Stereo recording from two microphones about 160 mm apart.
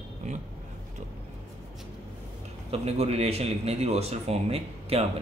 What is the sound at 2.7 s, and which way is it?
Speech, 40° right (ahead or behind).